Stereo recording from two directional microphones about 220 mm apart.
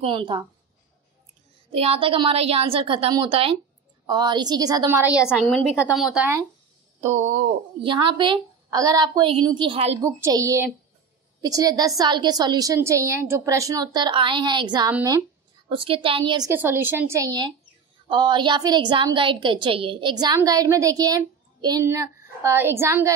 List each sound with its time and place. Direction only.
0.0 s a woman's voice: 20° right (ahead or behind)
1.7 s a woman's voice: 25° right (ahead or behind); by 6.4 s 10° right (ahead or behind)
7.0 s a woman's voice: 30° right (ahead or behind)
10.0 s a woman's voice: 15° right (ahead or behind)
15.7 s a woman's voice: 25° right (ahead or behind)